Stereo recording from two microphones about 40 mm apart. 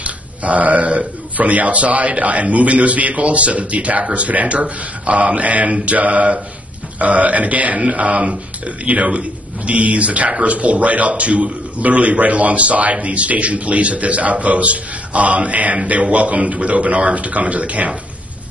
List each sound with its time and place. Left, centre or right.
0.0 s speech: right